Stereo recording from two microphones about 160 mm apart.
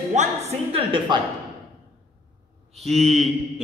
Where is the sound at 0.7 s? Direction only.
35° right (ahead or behind).